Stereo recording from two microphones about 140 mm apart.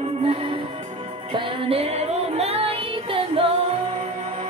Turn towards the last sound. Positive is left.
turn(degrees=-50)  # may be behind; listen again after turning